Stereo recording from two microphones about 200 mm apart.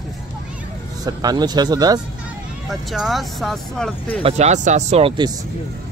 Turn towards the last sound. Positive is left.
turn(degrees=-30)  # may be behind; listen again after turning